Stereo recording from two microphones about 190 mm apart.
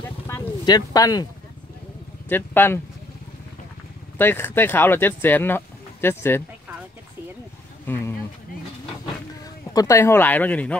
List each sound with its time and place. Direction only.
0.3 s a sound: 20° left (ahead or behind)
2.2 s speech: 10° left (ahead or behind)
4.2 s speech: 10° left (ahead or behind)
7.8 s speech: 10° left (ahead or behind)
9.8 s speech: 15° left (ahead or behind)